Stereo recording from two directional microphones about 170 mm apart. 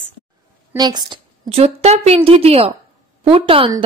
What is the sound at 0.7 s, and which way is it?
A woman's voice, 25° right (ahead or behind).